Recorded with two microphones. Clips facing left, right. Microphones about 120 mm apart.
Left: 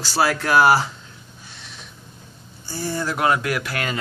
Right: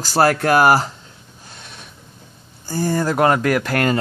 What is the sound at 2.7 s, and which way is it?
Speech, 45° right (ahead or behind).